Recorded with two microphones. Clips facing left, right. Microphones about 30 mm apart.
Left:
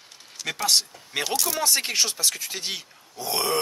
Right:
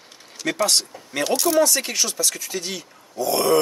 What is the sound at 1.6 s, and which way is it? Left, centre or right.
Speech, left.